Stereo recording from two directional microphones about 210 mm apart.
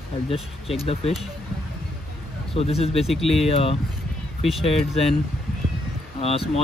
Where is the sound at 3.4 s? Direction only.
25° left (ahead or behind).